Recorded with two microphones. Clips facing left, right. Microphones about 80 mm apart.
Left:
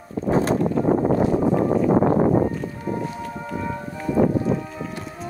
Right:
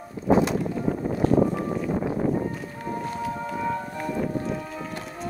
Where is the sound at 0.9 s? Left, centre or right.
Left.